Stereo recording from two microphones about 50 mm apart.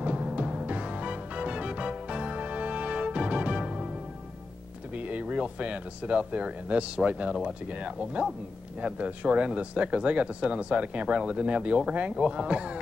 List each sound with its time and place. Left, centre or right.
0.0 s music: right
4.9 s speech: right